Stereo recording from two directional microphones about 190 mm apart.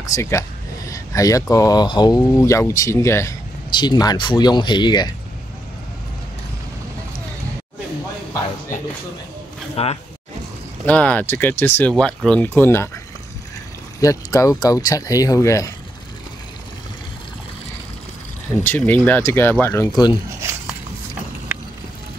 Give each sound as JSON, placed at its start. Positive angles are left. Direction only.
{"t": 0.1, "sound": "speech", "side_deg": 15}
{"t": 9.8, "sound": "speech", "side_deg": 30}
{"t": 10.9, "sound": "speech", "side_deg": 10}
{"t": 13.9, "sound": "speech", "side_deg": 15}
{"t": 18.5, "sound": "speech", "side_deg": 10}